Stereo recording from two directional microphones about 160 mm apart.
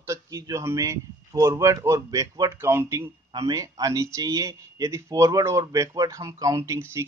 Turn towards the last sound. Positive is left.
turn(degrees=-15)  # may be behind; listen again after turning